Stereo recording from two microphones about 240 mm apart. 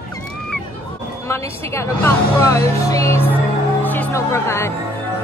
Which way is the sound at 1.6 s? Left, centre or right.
Centre.